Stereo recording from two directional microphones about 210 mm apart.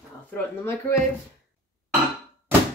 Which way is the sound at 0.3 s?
10° left (ahead or behind).